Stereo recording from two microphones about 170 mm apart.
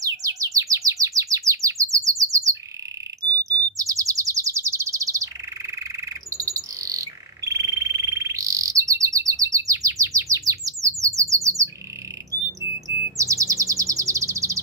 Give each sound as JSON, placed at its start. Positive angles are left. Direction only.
{"t": 0.0, "sound": "chirp", "side_deg": -20}
{"t": 6.3, "sound": "bird", "side_deg": -20}
{"t": 12.8, "sound": "chirp", "side_deg": -20}